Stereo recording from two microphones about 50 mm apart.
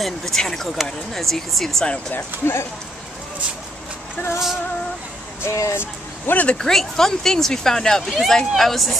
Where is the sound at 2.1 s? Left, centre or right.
Left.